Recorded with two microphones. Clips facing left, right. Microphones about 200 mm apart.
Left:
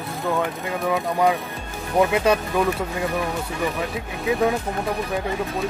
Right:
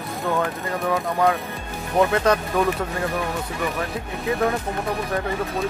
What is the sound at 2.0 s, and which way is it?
Speech, 15° left (ahead or behind).